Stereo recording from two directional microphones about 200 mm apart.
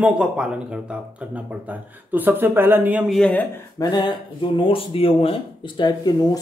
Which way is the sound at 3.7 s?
20° left (ahead or behind).